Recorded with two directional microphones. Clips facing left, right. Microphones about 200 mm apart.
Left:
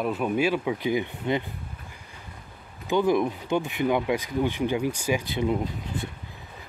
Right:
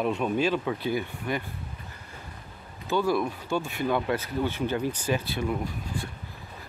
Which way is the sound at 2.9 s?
20° left (ahead or behind).